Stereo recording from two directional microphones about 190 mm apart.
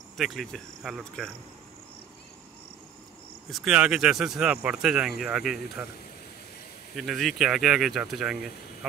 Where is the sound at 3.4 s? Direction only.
Centre (ahead or behind).